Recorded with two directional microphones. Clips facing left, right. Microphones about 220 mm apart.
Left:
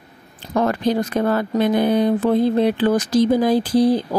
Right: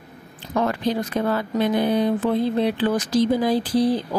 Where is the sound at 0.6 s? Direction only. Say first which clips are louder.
Left 4 dB; 45° left (ahead or behind).